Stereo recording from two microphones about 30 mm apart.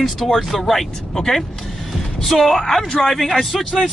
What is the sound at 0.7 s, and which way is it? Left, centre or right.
Speech, centre.